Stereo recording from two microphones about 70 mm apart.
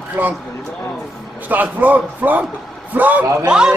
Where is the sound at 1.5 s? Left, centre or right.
Right.